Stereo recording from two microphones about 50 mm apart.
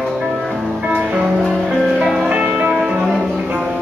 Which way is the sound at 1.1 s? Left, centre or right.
Centre.